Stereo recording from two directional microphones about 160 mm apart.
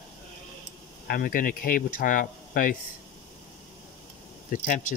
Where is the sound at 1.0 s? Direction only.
65° left (ahead or behind).